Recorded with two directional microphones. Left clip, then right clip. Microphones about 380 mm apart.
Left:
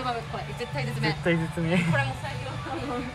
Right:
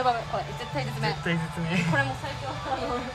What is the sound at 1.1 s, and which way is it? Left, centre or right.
Speech, centre.